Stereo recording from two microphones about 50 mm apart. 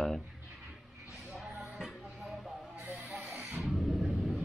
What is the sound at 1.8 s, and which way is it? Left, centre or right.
Music, centre.